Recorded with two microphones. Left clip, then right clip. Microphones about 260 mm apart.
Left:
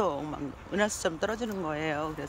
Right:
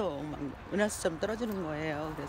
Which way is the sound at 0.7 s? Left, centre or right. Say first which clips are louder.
Left 2 dB; centre.